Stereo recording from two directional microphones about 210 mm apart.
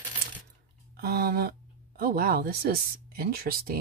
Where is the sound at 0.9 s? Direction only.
50° right (ahead or behind).